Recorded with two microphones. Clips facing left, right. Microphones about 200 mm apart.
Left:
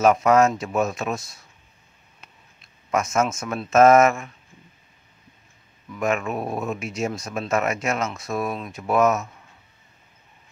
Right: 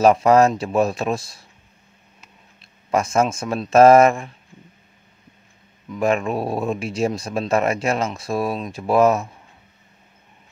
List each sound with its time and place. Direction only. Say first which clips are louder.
0.0 s speech: right 3 dB; 35° right (ahead or behind)
2.9 s speech: right 3 dB; 30° right (ahead or behind)
5.9 s speech: right 4 dB; 30° right (ahead or behind)